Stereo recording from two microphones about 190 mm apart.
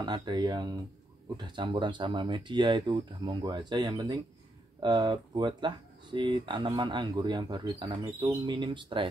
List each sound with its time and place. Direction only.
0.0 s speech: 25° right (ahead or behind)